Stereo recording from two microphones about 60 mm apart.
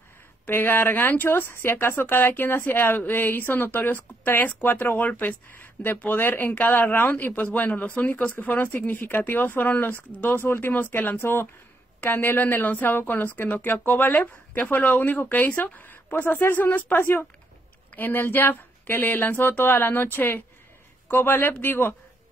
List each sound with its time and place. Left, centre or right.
0.5 s a woman's voice: left